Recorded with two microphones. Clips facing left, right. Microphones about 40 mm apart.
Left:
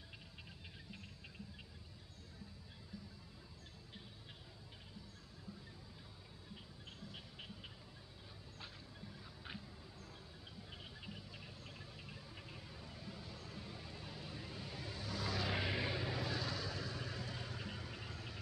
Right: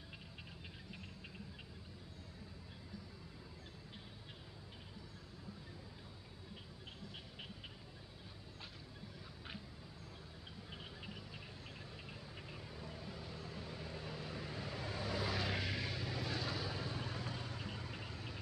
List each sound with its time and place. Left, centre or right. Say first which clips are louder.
12.1 s a sound: right 2 dB; centre
12.9 s vehicle: right 3 dB; right
15.5 s vehicle: left 2 dB; centre
16.2 s vehicle: even; centre
16.5 s vehicle: right 1 dB; right